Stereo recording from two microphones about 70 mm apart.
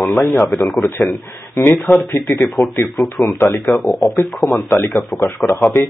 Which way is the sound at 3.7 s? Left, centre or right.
Left.